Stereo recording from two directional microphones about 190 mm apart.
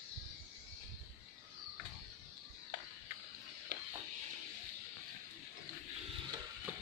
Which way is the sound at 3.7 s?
65° right (ahead or behind).